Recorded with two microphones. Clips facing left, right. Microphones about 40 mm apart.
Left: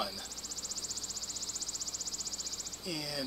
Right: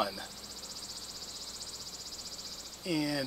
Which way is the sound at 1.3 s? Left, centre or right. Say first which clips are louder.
Left 2 dB; centre.